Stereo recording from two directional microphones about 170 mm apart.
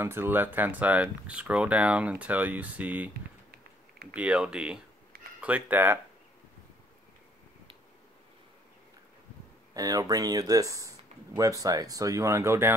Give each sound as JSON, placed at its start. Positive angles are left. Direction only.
{"t": 0.0, "sound": "speech", "side_deg": -15}
{"t": 4.1, "sound": "speech", "side_deg": -5}
{"t": 9.8, "sound": "speech", "side_deg": -20}